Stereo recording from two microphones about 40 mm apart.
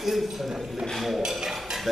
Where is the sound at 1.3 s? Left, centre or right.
Centre.